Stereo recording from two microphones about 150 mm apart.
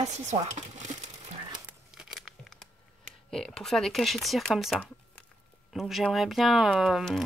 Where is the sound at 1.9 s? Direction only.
Centre (ahead or behind).